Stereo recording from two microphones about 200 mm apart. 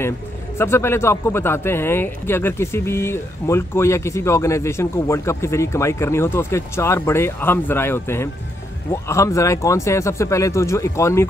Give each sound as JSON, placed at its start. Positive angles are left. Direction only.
{"t": 0.6, "sound": "speech", "side_deg": 10}